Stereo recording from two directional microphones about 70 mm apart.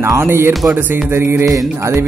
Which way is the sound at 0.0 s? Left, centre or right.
Right.